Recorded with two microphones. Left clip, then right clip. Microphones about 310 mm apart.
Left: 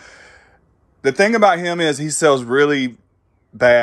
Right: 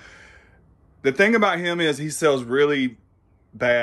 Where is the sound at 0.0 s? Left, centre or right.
Centre.